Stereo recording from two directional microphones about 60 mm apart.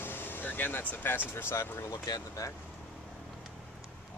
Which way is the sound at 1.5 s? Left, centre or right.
Left.